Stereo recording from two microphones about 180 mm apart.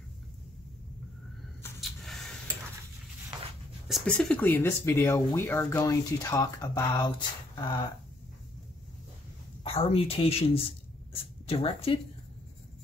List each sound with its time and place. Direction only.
1.8 s a sound: centre (ahead or behind)
3.9 s speech: 5° left (ahead or behind); by 7.8 s 25° left (ahead or behind)
9.6 s speech: 30° left (ahead or behind)